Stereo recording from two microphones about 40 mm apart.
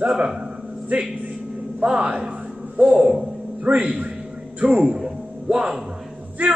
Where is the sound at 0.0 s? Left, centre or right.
Right.